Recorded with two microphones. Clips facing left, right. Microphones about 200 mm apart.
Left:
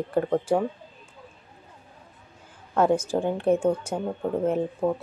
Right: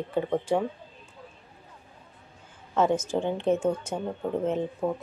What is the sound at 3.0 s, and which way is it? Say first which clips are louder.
Speech: left 2 dB; 10° left (ahead or behind).